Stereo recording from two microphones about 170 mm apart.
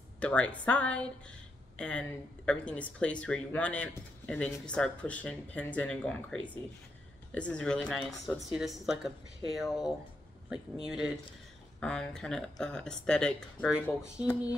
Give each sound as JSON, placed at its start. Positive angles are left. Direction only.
{"t": 0.2, "sound": "speech", "side_deg": 5}